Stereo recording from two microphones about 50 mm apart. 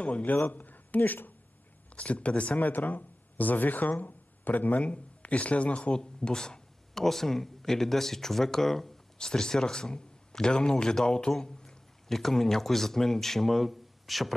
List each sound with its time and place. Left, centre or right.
0.0 s a man's voice: left
2.0 s speech: left; by 14.3 s centre